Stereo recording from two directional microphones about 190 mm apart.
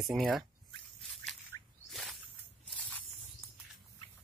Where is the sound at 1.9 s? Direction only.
Centre (ahead or behind).